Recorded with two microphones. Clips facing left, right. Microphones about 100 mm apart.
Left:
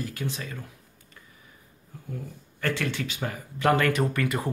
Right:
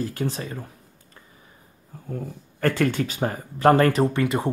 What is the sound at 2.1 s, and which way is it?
Speech, 45° right (ahead or behind).